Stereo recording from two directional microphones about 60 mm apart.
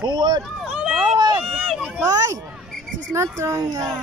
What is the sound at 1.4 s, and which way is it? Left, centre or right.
Speech, centre.